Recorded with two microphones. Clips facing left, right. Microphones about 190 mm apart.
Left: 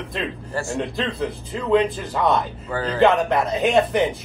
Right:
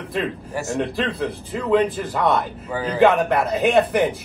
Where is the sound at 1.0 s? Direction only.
Centre (ahead or behind).